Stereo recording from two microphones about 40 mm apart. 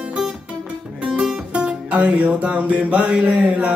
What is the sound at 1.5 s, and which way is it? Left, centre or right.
Music, right.